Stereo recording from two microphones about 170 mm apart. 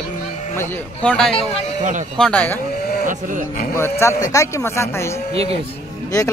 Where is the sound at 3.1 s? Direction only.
50° right (ahead or behind).